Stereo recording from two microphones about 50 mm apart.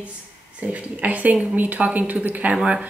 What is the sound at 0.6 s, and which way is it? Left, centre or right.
A woman's voice, right.